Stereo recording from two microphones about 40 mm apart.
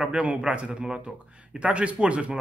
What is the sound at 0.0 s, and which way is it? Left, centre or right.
A man's voice, right.